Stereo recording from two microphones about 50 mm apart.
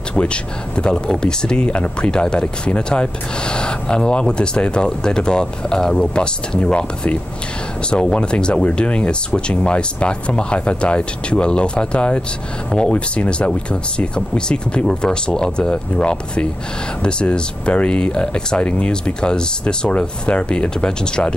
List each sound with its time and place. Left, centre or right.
0.2 s speech: left
7.9 s speech: centre